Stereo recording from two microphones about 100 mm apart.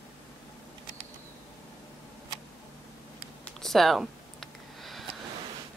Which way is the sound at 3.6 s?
5° left (ahead or behind).